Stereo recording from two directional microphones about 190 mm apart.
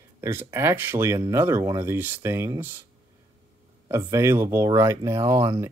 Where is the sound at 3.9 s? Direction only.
15° right (ahead or behind).